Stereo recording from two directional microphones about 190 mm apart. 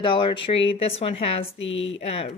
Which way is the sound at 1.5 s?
80° left.